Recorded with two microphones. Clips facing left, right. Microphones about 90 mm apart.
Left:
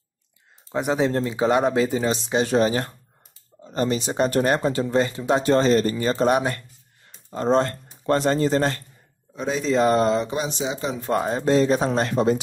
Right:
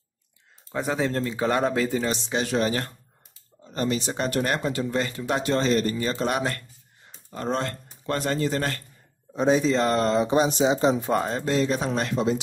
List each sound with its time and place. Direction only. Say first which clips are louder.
0.7 s speech: left 4 dB; 15° left (ahead or behind)
2.3 s speech: left 5 dB; 30° left (ahead or behind)
4.3 s speech: left 3 dB; 30° left (ahead or behind)
6.3 s speech: left 5 dB; 20° left (ahead or behind)
7.2 s speech: left 7 dB; 30° left (ahead or behind)
9.8 s speech: left 4 dB; 10° left (ahead or behind)
10.3 s speech: right 6 dB; 35° right (ahead or behind)
11.0 s speech: left 1 dB; centre (ahead or behind)
11.4 s speech: left 5 dB; 30° left (ahead or behind)
12.1 s speech: left 3 dB; 50° left (ahead or behind)